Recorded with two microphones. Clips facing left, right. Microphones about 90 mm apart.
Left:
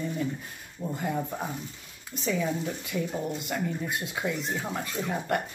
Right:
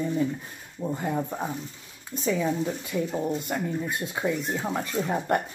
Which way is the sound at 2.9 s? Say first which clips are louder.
Right 2 dB; 30° right (ahead or behind).